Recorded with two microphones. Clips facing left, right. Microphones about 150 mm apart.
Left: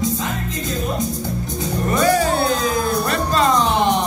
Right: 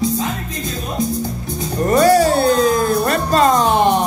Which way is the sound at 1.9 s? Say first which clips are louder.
Right 5 dB; 40° right (ahead or behind).